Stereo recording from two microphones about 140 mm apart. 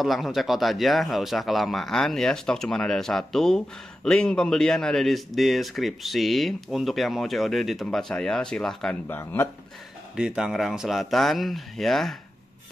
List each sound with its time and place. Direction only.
0.0 s speech: centre (ahead or behind)
9.0 s speech: 15° left (ahead or behind)
10.1 s speech: 5° right (ahead or behind)